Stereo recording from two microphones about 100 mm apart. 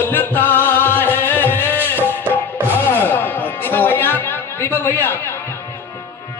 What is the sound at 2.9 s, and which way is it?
Music, 20° left (ahead or behind).